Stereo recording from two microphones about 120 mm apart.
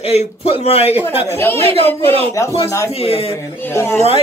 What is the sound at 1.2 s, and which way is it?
Speech, 20° left (ahead or behind).